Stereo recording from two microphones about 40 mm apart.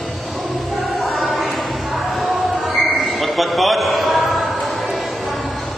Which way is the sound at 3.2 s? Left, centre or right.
Centre.